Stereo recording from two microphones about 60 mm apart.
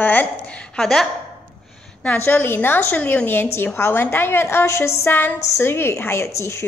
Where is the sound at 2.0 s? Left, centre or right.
Left.